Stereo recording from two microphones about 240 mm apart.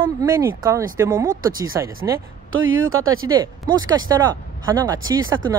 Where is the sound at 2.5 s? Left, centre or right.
Right.